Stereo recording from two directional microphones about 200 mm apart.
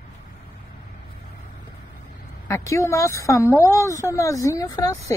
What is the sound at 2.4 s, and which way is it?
Speech, 15° left (ahead or behind).